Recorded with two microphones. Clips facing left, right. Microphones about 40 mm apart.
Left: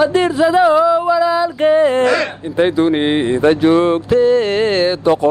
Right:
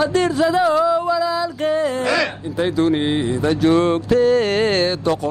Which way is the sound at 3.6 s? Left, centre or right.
Centre.